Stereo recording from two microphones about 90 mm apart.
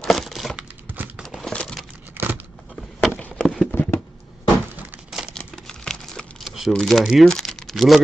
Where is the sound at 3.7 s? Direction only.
25° left (ahead or behind).